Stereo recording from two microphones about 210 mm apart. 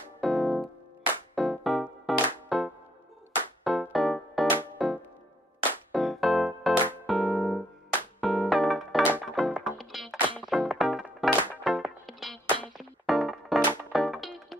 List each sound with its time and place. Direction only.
0.2 s music: centre (ahead or behind)